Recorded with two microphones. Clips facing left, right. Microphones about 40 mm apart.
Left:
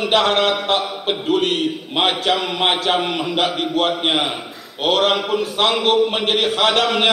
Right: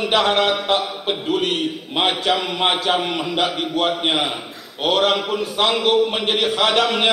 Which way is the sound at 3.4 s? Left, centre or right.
Centre.